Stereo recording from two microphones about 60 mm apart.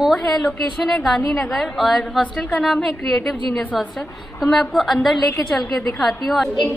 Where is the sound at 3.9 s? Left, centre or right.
Centre.